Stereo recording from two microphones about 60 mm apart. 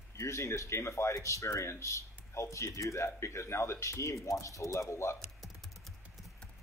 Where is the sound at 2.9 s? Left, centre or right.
Left.